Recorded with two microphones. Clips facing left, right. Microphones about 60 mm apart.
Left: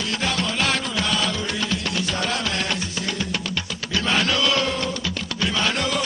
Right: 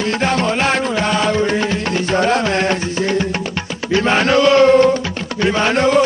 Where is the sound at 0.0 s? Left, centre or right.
Right.